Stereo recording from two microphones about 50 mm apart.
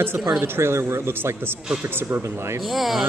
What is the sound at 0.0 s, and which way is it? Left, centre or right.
A man's voice, right.